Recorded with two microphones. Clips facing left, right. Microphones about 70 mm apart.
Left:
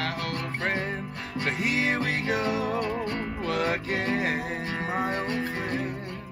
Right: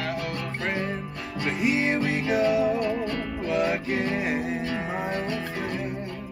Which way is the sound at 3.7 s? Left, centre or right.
Left.